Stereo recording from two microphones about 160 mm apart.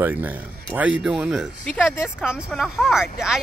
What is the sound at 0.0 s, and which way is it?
Speech, 10° right (ahead or behind).